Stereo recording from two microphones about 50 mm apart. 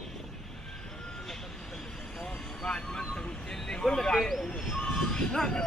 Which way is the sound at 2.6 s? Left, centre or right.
Centre.